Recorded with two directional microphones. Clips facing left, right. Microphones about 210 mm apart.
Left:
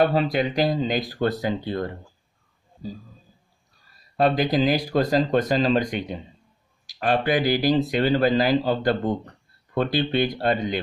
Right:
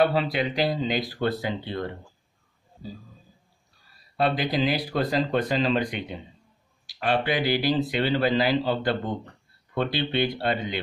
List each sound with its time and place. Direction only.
0.0 s speech: 45° left (ahead or behind)
4.2 s speech: 45° left (ahead or behind)